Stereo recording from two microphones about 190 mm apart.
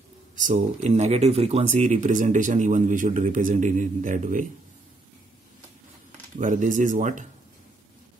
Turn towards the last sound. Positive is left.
turn(degrees=-40)  # may be behind; listen again after turning